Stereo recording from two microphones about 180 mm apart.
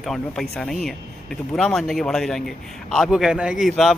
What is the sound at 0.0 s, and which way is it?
Speech, centre (ahead or behind).